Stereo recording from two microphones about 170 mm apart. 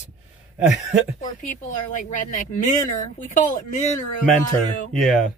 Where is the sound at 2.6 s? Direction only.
45° left (ahead or behind).